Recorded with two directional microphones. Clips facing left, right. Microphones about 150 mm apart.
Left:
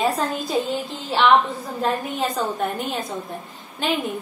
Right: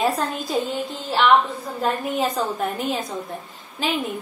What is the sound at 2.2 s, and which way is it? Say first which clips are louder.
A woman's voice: right 1 dB; centre (ahead or behind).